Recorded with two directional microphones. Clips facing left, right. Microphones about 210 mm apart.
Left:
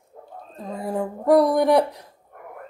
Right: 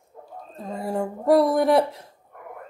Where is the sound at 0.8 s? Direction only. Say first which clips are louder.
Even; centre (ahead or behind).